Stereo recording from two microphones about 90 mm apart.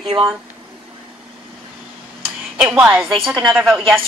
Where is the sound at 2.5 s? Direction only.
10° right (ahead or behind).